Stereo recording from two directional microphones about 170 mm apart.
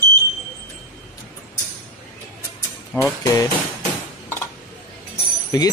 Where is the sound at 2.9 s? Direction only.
15° left (ahead or behind).